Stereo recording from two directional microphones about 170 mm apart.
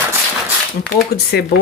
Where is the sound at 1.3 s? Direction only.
70° left (ahead or behind).